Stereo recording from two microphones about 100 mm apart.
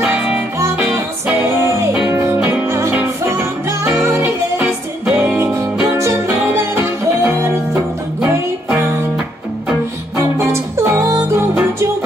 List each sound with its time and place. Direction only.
0.0 s music: 10° right (ahead or behind)
1.5 s music: 25° right (ahead or behind)
2.4 s music: 15° right (ahead or behind)
2.7 s music: 30° right (ahead or behind); by 5.4 s 10° right (ahead or behind)
5.4 s music: 30° right (ahead or behind)
10.8 s music: 30° right (ahead or behind)